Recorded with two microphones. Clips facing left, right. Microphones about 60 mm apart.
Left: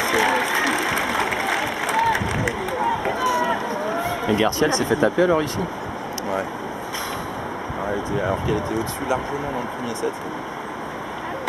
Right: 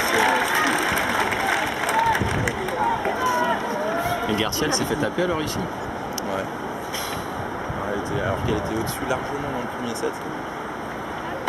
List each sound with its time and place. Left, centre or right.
0.0 s applause: centre
4.4 s speech: left